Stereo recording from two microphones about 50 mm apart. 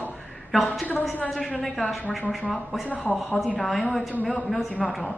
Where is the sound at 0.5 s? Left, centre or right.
Centre.